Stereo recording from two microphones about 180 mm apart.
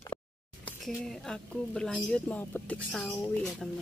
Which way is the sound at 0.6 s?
Centre (ahead or behind).